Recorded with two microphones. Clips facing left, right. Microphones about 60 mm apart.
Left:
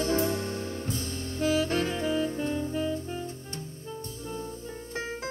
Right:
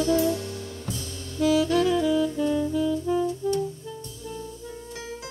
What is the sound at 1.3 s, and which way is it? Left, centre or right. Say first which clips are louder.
Saxophone: right 5 dB; left.